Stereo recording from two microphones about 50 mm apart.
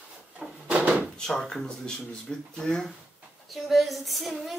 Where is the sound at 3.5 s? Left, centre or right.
Centre.